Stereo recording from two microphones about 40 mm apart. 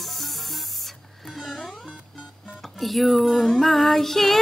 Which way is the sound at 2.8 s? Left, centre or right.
Centre.